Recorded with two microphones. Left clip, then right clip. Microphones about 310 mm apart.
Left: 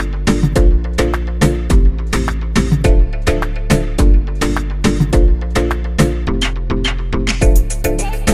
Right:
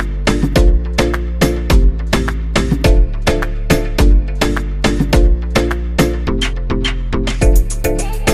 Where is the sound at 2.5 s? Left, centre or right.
Centre.